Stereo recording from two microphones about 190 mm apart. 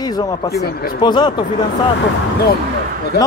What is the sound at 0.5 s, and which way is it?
Speech, 55° left (ahead or behind).